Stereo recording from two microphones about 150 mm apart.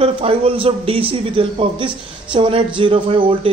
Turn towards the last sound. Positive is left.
turn(degrees=-35)  # may be behind; listen again after turning